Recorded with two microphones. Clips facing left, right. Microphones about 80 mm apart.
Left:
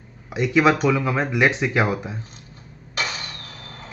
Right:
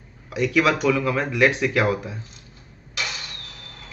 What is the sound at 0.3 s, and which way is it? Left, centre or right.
Speech, left.